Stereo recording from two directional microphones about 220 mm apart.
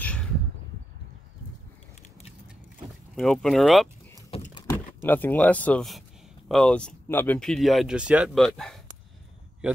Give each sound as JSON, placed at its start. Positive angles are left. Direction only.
{"t": 0.0, "sound": "a sound", "side_deg": 5}
{"t": 3.2, "sound": "speech", "side_deg": 0}
{"t": 4.3, "sound": "vehicle", "side_deg": 25}
{"t": 4.6, "sound": "speech", "side_deg": 10}